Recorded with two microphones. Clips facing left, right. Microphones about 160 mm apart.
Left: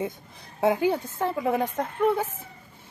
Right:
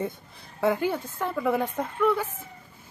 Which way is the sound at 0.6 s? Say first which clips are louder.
Left 2 dB; 20° left (ahead or behind).